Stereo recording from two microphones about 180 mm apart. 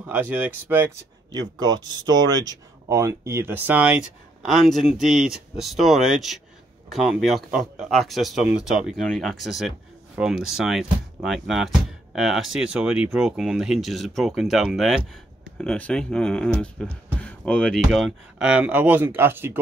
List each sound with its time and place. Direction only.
0.0 s speech: 10° right (ahead or behind)
1.3 s speech: 25° right (ahead or behind)